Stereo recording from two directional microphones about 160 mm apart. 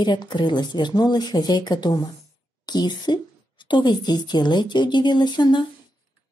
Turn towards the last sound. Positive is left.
turn(degrees=30)  # may be behind; listen again after turning